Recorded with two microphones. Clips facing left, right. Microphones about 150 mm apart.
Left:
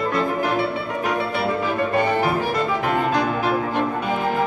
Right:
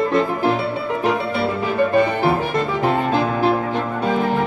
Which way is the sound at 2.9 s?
30° right (ahead or behind).